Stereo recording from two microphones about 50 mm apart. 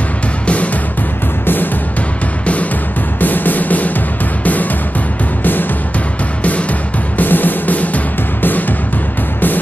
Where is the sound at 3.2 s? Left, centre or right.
Left.